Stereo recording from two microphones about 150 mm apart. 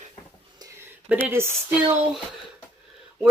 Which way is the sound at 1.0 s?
15° right (ahead or behind).